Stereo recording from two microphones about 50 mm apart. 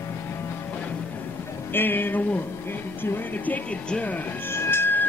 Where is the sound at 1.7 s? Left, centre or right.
Left.